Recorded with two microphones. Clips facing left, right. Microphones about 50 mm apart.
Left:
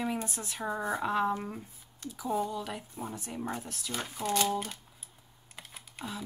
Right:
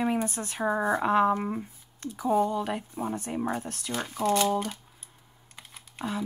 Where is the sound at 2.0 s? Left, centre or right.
Right.